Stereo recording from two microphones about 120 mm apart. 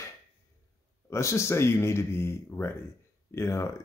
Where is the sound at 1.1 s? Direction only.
25° left (ahead or behind).